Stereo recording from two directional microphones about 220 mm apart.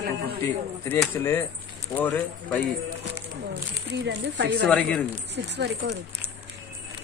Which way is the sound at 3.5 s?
50° right (ahead or behind).